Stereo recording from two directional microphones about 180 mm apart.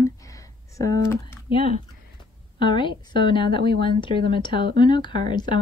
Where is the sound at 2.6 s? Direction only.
25° left (ahead or behind).